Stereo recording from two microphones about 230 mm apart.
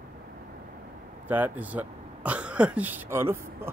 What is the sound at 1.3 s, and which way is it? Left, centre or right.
Speech, centre.